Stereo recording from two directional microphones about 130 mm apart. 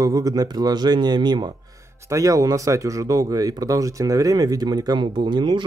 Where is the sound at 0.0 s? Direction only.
30° right (ahead or behind).